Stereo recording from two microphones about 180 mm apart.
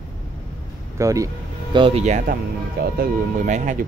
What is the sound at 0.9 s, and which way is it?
Speech, 15° right (ahead or behind).